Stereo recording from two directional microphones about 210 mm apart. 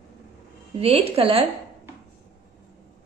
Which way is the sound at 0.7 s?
30° right (ahead or behind).